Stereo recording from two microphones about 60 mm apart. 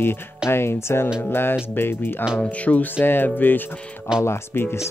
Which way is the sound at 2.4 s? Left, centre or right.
Left.